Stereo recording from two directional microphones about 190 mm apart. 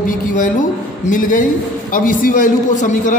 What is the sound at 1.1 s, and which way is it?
A man's voice, 45° left (ahead or behind).